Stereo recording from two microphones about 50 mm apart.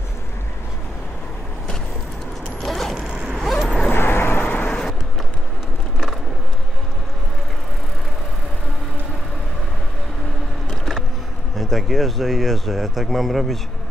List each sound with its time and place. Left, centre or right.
2.6 s mechanisms: centre
3.3 s vehicle: centre
3.9 s vehicle: left
10.7 s boat: centre
11.5 s speech: centre